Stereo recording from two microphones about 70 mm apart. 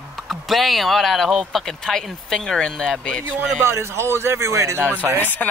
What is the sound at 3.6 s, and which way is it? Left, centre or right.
Speech, right.